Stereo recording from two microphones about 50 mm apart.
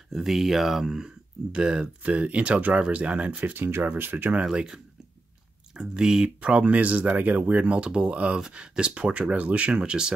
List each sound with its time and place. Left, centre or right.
0.1 s speech: centre; by 3.5 s right
3.5 s speech: right
4.5 s speech: centre
6.6 s speech: right